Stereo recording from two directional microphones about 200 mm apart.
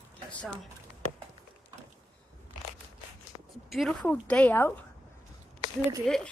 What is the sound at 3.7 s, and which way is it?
A woman's voice, centre (ahead or behind).